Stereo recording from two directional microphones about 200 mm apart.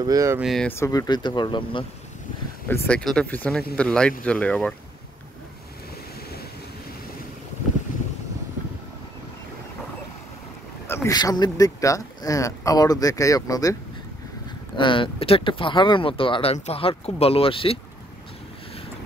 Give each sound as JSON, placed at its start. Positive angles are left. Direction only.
{"t": 0.0, "sound": "speech", "side_deg": -15}
{"t": 0.4, "sound": "speech", "side_deg": 0}
{"t": 2.7, "sound": "speech", "side_deg": 5}
{"t": 10.9, "sound": "speech", "side_deg": 15}
{"t": 14.8, "sound": "speech", "side_deg": 25}